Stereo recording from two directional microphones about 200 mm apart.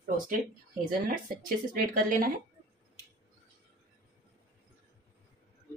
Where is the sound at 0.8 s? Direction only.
45° right (ahead or behind).